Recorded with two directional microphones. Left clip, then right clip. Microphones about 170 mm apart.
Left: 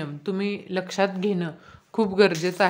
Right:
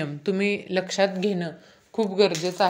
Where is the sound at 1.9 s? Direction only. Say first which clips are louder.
Left 1 dB; 25° left (ahead or behind).